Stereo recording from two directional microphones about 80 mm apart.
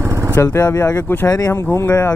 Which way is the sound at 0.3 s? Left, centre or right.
Left.